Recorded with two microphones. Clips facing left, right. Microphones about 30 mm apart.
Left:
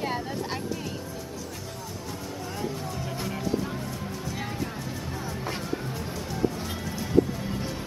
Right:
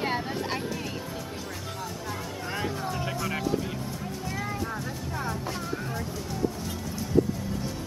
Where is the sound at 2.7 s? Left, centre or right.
Right.